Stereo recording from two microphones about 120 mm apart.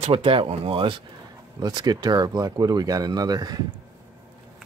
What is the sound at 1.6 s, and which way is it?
Speech, 35° right (ahead or behind).